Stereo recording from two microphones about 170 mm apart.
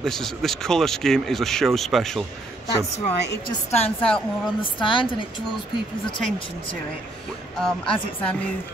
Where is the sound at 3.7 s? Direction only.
35° left (ahead or behind).